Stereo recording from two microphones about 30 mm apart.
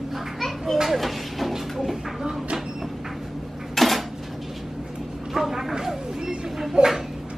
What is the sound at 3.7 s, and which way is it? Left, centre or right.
Dishes, centre.